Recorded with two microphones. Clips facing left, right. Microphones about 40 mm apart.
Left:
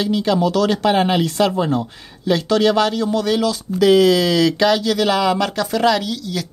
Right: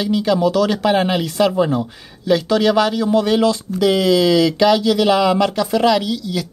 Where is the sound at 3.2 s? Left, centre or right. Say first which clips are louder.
Right 6 dB; centre.